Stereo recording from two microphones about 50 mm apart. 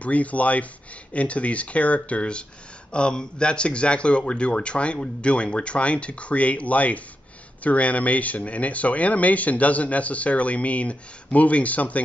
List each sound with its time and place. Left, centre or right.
0.0 s speech: left